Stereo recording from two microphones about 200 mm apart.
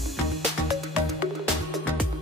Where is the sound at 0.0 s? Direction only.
Centre (ahead or behind).